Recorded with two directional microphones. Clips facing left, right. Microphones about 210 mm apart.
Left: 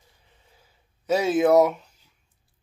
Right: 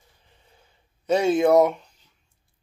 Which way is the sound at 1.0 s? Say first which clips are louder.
Right 1 dB; 5° left (ahead or behind).